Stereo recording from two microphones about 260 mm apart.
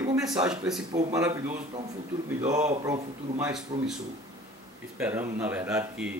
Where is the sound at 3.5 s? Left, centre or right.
Centre.